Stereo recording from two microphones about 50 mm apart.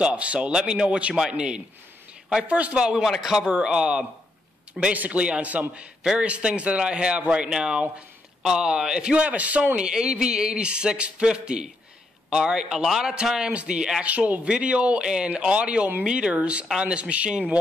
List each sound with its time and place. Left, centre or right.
0.0 s speech: right
3.2 s a man's voice: centre
4.9 s a man's voice: right
14.0 s speech: right